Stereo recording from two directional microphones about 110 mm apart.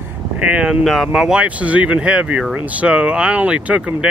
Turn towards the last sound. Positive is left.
turn(degrees=-10)  # may be behind; listen again after turning